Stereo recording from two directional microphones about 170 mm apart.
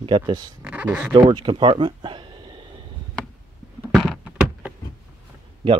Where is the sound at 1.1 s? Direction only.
30° right (ahead or behind).